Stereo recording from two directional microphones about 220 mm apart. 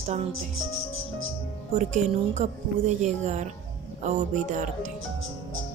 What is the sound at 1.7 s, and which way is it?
A woman's voice, 30° right (ahead or behind).